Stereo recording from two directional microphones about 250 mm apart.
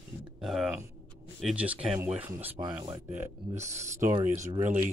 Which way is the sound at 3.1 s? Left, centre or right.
Right.